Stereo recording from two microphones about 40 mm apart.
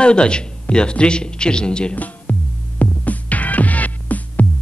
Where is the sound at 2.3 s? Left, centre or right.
Left.